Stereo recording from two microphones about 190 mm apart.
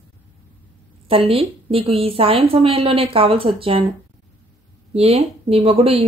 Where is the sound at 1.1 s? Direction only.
30° right (ahead or behind).